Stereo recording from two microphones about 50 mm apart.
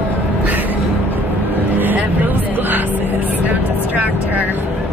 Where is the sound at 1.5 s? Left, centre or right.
Right.